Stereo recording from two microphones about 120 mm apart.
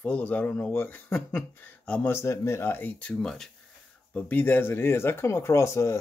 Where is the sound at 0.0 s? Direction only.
10° left (ahead or behind).